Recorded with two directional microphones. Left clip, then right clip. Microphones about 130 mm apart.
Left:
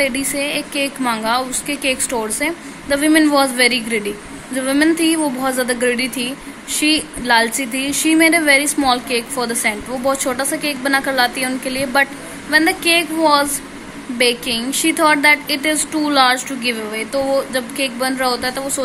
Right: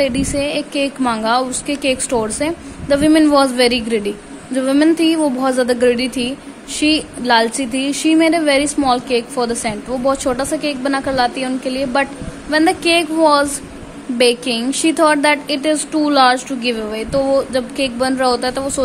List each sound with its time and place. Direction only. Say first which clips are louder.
0.0 s a woman's voice: right 2 dB; 35° right (ahead or behind)